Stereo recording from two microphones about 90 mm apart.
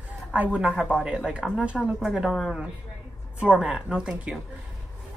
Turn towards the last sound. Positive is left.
turn(degrees=-10)  # may be behind; listen again after turning